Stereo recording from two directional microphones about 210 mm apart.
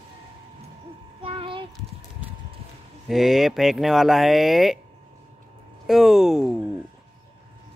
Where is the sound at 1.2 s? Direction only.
25° right (ahead or behind).